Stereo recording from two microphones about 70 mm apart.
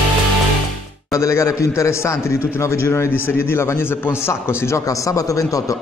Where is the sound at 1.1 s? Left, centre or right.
Left.